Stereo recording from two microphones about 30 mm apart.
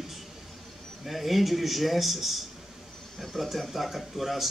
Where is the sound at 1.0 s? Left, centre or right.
Centre.